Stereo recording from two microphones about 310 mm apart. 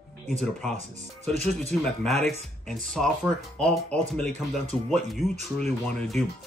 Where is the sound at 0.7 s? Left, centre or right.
Right.